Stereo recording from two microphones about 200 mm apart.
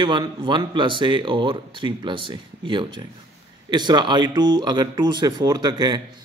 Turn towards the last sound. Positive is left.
turn(degrees=-20)  # may be behind; listen again after turning